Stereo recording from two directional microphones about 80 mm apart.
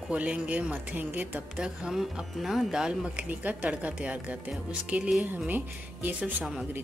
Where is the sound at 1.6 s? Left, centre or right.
Centre.